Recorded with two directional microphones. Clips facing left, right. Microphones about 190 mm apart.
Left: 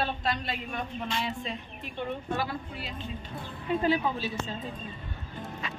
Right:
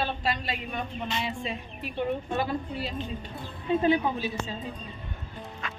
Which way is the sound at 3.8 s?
20° right (ahead or behind).